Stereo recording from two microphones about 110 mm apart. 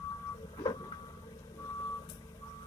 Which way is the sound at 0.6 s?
40° left (ahead or behind).